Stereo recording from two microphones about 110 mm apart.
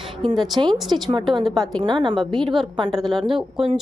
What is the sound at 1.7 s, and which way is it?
Speech, 45° right (ahead or behind).